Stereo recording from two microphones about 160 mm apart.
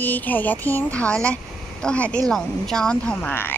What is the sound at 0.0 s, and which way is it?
Speech, 10° left (ahead or behind).